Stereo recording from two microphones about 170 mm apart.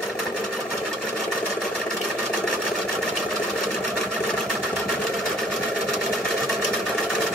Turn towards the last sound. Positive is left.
turn(degrees=0)  # may be behind; listen again after turning